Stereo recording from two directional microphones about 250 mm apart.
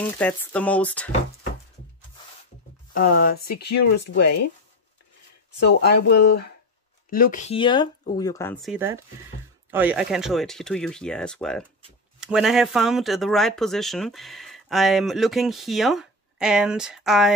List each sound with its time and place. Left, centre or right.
0.0 s speech: centre
2.9 s speech: left
5.6 s speech: left; by 17.3 s centre